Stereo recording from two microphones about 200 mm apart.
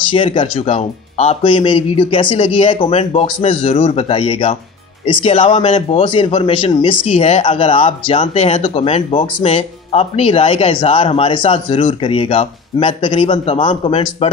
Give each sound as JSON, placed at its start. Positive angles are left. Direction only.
{"t": 0.1, "sound": "speech", "side_deg": 25}